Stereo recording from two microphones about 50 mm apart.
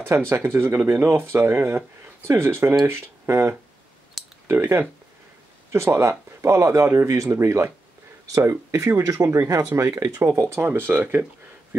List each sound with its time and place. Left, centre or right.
0.3 s speech: right
9.8 s speech: right
10.7 s speech: right